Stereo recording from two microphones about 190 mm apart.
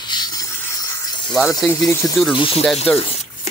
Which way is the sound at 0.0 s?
20° left (ahead or behind).